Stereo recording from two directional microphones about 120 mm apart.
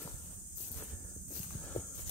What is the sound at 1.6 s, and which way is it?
Walk, 10° left (ahead or behind).